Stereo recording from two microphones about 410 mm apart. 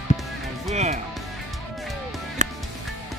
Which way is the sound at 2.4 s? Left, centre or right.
Centre.